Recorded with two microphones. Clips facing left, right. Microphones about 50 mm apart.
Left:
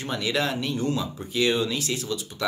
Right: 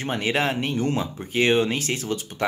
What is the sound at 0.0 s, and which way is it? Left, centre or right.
Speech, right.